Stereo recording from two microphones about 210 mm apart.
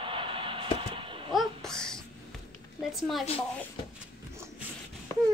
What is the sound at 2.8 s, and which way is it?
Speech, centre (ahead or behind).